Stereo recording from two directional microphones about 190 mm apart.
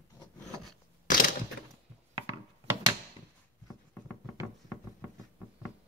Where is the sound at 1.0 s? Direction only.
45° left (ahead or behind).